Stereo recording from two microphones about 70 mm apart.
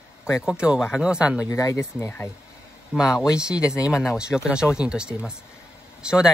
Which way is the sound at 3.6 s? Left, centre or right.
Left.